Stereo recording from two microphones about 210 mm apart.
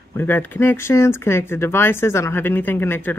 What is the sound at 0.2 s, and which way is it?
Speech, 10° left (ahead or behind).